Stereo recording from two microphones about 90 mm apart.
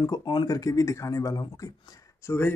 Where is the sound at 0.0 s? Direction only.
50° left (ahead or behind).